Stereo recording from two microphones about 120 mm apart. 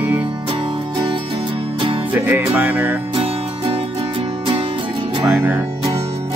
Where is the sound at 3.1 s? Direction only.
50° right (ahead or behind).